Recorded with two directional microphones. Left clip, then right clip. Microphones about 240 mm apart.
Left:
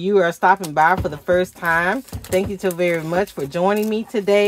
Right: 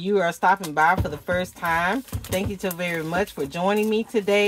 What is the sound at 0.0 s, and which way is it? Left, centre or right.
Speech, left.